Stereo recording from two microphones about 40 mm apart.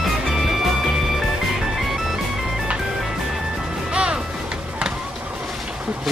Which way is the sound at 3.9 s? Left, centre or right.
Right.